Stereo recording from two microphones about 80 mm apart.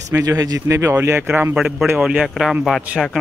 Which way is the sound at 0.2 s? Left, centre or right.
Right.